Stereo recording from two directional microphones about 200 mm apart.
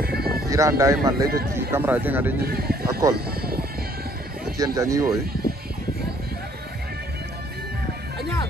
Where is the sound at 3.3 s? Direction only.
50° right (ahead or behind).